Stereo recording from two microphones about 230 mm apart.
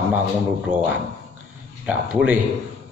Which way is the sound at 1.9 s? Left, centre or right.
Centre.